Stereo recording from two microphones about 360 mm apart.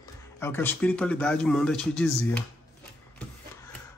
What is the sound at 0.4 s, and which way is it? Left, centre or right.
Speech, centre.